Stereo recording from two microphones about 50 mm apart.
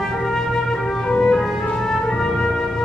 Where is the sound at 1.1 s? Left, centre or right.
Centre.